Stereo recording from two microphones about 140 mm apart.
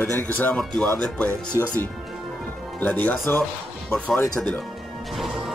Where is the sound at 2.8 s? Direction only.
10° left (ahead or behind).